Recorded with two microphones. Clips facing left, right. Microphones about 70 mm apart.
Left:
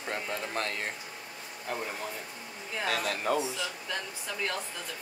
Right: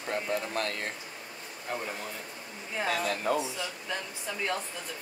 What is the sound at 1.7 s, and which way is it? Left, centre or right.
Speech, centre.